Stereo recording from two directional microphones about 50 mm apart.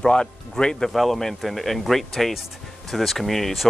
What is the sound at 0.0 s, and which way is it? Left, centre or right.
Speech, centre.